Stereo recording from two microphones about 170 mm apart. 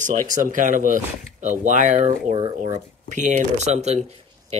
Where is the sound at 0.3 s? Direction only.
50° right (ahead or behind).